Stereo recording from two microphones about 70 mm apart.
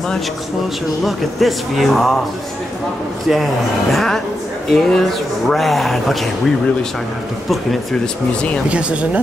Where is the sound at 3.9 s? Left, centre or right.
Centre.